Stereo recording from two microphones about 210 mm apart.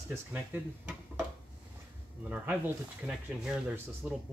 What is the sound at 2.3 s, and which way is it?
Speech, 5° right (ahead or behind).